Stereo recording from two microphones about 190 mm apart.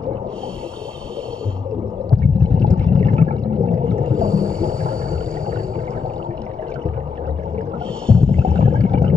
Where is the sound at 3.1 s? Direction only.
35° right (ahead or behind).